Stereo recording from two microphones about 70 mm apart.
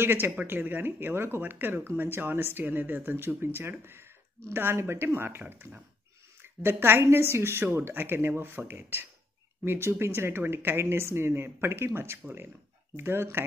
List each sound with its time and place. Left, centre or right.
0.0 s speech: right